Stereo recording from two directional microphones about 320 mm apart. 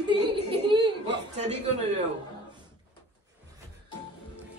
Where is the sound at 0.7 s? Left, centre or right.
Centre.